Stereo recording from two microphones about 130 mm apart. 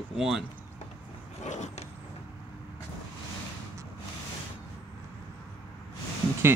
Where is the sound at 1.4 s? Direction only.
65° left (ahead or behind).